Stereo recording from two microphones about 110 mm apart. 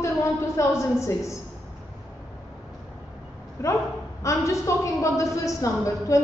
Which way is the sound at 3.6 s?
25° left (ahead or behind).